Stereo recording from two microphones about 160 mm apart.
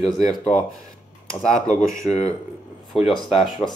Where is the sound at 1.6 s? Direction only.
60° left (ahead or behind).